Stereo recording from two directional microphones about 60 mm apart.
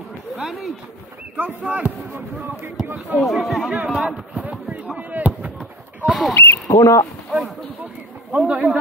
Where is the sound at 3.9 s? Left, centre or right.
Centre.